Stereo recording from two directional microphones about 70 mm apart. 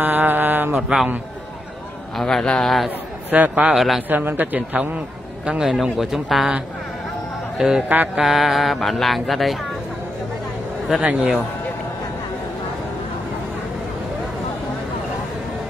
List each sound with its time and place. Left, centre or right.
0.0 s mantra: right
0.7 s a man's voice: centre
2.1 s speech: centre
3.3 s a man's voice: right
3.7 s speech: centre
4.1 s a man's voice: right; by 6.5 s centre
7.5 s speech: centre
11.0 s a man's voice: right